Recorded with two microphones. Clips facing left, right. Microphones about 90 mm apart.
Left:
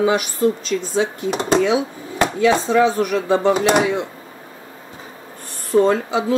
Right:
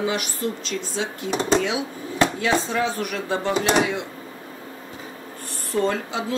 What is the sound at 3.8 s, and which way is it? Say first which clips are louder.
Speech: left 6 dB; 25° left (ahead or behind).